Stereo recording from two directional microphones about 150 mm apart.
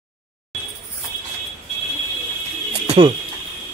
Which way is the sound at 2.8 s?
40° right (ahead or behind).